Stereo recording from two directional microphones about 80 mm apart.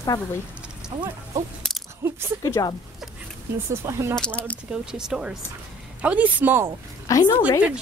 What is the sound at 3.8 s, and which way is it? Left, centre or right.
Speech, right.